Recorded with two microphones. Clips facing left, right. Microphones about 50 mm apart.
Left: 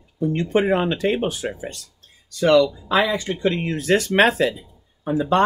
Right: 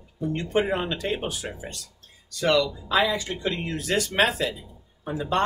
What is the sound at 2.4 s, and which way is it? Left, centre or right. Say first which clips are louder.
Speech: left 7 dB; left.